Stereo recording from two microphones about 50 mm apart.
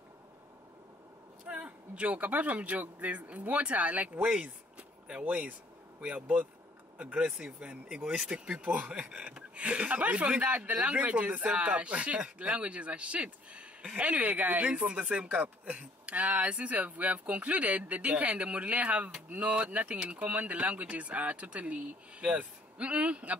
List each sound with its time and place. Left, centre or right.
1.5 s speech: right
4.4 s a sound: right
5.9 s speech: right
7.2 s speech: centre
8.5 s speech: right
8.9 s speech: centre